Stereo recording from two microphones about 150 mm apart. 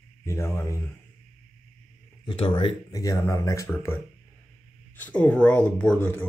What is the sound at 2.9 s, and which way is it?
Speech, 20° left (ahead or behind).